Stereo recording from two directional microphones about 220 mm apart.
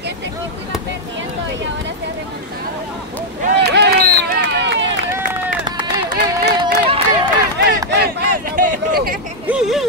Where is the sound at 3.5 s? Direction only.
50° right (ahead or behind).